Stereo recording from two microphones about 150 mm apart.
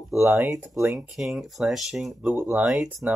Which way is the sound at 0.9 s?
Centre (ahead or behind).